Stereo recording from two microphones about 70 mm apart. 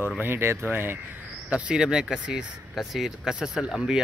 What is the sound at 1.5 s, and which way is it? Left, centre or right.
Speech, centre.